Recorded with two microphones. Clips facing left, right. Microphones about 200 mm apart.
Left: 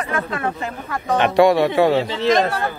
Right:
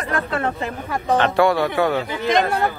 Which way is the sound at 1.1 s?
20° left (ahead or behind).